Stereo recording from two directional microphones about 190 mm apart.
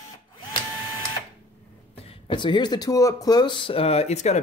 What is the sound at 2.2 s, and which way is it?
Speech, 25° left (ahead or behind).